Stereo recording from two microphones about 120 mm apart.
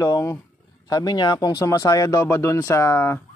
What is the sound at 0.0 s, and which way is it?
Speech, 30° left (ahead or behind).